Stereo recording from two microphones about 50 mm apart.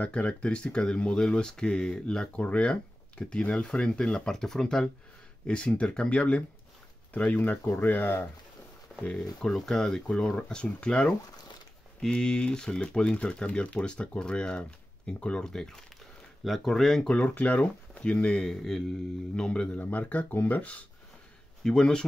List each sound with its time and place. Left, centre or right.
0.0 s speech: left
9.2 s speech: centre
17.1 s speech: left
19.8 s speech: left
21.6 s speech: centre